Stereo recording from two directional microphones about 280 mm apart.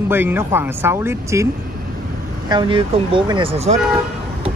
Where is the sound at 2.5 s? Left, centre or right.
Centre.